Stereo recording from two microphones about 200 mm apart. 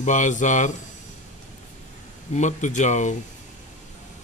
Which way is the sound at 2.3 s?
35° left (ahead or behind).